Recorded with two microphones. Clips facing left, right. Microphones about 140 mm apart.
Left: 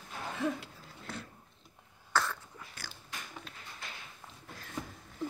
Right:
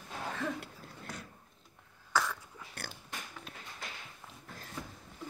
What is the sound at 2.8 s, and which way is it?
Biting, 65° right (ahead or behind).